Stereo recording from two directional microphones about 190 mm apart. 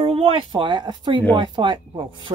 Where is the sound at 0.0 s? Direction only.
30° right (ahead or behind).